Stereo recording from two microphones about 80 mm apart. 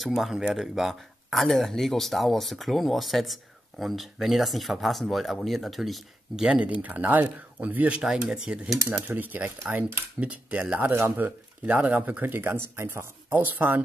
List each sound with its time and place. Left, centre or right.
0.0 s speech: centre
8.0 s speech: centre
9.0 s speech: right
10.9 s speech: right
13.3 s speech: right